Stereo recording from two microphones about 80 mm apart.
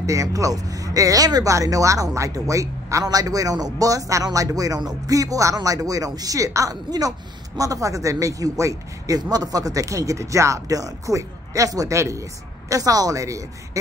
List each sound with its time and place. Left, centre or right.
0.0 s a woman's voice: right